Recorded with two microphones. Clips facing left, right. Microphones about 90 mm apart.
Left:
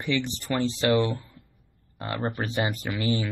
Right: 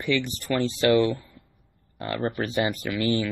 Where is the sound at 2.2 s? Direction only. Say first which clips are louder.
Right 2 dB; 20° left (ahead or behind).